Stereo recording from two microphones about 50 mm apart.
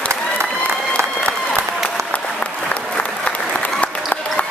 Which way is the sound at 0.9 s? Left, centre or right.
Left.